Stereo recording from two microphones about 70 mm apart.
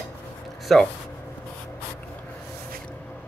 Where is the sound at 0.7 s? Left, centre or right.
Centre.